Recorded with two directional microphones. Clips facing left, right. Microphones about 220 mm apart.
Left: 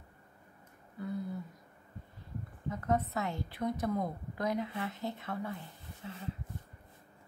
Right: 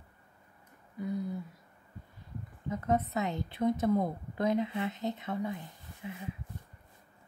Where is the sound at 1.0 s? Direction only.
15° right (ahead or behind).